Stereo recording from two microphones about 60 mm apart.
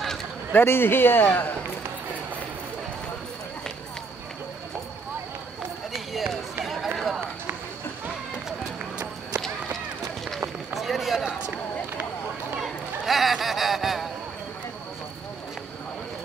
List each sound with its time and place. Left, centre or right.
0.5 s a man's voice: left
6.1 s run: centre
10.7 s run: centre
12.6 s a sound: centre